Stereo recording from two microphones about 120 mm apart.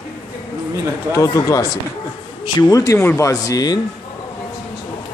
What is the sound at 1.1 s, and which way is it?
Speech, 30° left (ahead or behind).